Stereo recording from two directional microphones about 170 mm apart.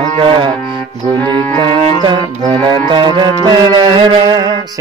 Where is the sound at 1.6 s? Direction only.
25° right (ahead or behind).